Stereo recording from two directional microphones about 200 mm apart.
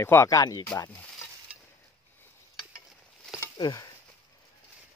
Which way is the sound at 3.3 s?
20° left (ahead or behind).